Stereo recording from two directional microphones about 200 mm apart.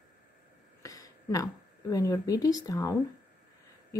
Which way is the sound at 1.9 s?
15° left (ahead or behind).